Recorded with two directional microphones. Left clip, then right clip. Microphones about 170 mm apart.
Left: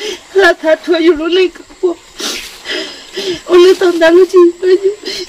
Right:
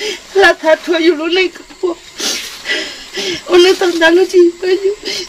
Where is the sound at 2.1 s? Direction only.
5° right (ahead or behind).